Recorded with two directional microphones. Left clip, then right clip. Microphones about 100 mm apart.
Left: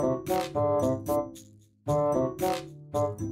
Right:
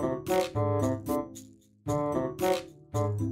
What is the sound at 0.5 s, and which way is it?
Music, 30° right (ahead or behind).